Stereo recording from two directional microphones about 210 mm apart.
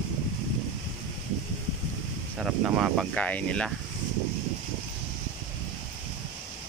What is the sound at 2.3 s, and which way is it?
Speech, 5° right (ahead or behind).